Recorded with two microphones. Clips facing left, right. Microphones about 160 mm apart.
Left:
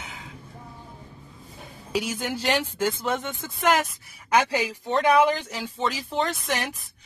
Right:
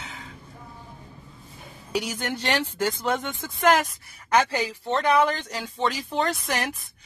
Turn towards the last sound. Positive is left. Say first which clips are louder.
# right 1 dB
turn(degrees=0)  # may be behind; listen again after turning